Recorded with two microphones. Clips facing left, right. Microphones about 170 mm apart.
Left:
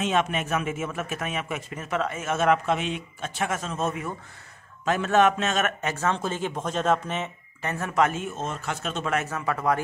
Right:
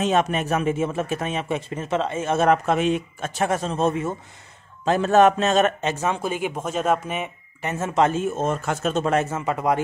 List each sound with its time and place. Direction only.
0.0 s a man's voice: 40° right (ahead or behind)
8.4 s a man's voice: 50° right (ahead or behind); by 9.8 s 20° right (ahead or behind)